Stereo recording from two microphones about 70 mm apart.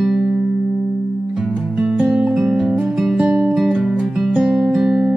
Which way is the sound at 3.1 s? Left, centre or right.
Centre.